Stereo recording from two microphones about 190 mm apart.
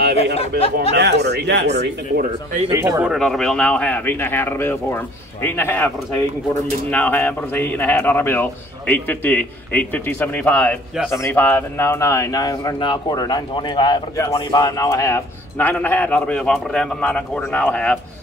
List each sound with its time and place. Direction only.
0.9 s speech: 60° right (ahead or behind)
2.7 s speech: 10° right (ahead or behind); by 5.9 s 10° left (ahead or behind)
6.9 s speech: 10° left (ahead or behind)